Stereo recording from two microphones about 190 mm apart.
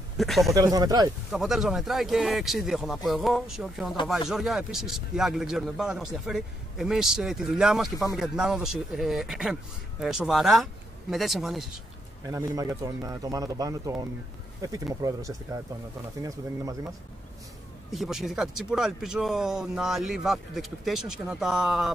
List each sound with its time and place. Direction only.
0.2 s speech: centre (ahead or behind)
0.6 s speech: 20° right (ahead or behind)
1.3 s speech: centre (ahead or behind)
12.3 s speech: 15° right (ahead or behind)
17.9 s speech: centre (ahead or behind)